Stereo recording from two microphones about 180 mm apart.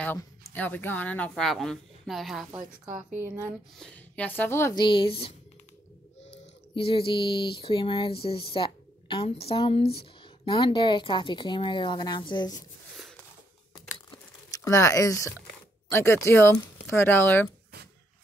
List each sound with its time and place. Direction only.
0.0 s speech: 10° left (ahead or behind)
3.2 s speech: 15° right (ahead or behind)
3.7 s speech: 5° left (ahead or behind)
4.7 s speech: 25° left (ahead or behind)
6.7 s speech: 30° left (ahead or behind)
14.6 s speech: 15° left (ahead or behind)